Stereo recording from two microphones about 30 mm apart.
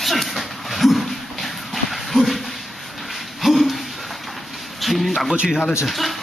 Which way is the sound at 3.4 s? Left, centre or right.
Centre.